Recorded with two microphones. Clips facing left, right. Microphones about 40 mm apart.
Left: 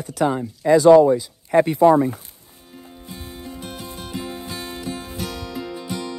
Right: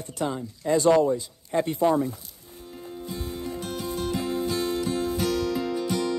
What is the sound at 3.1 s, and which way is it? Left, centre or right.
Music, left.